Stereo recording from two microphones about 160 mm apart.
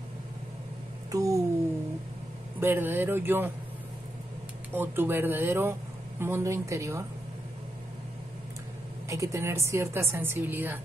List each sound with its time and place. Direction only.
1.1 s speech: 20° right (ahead or behind)
2.6 s speech: 15° right (ahead or behind)
4.7 s speech: 15° right (ahead or behind)
9.1 s speech: 20° right (ahead or behind)